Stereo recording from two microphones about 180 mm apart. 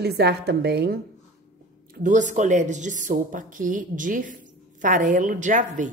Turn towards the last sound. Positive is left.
turn(degrees=-45)  # may be behind; listen again after turning